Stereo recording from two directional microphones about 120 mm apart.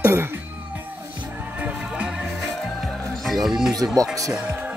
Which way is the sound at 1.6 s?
10° right (ahead or behind).